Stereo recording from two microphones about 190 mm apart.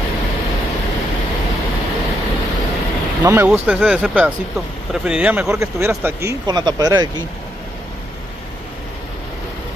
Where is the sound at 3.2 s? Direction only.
15° right (ahead or behind).